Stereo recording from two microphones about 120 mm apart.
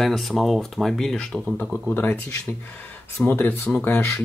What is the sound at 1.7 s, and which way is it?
Speech, 15° left (ahead or behind).